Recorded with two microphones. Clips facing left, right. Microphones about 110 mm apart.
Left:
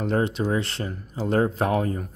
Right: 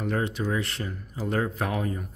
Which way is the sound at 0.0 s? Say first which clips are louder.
Left 4 dB; 25° left (ahead or behind).